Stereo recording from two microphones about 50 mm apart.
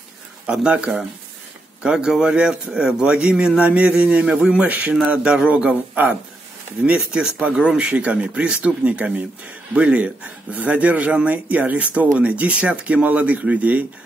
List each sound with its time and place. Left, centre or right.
0.5 s speech: centre
4.6 s speech: right
5.0 s speech: right